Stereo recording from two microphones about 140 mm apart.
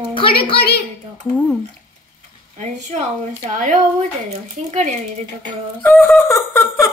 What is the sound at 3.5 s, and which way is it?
Speech, 60° right (ahead or behind).